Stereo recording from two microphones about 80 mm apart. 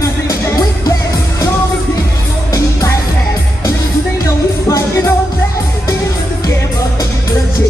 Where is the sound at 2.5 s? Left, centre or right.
Left.